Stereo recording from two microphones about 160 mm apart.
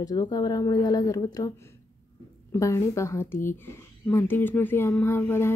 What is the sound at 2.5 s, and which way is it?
Speech, 20° left (ahead or behind).